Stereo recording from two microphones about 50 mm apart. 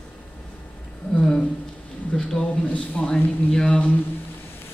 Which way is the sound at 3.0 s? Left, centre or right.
Left.